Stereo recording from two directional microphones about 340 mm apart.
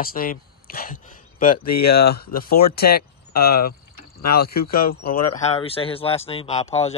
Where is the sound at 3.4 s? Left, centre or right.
Left.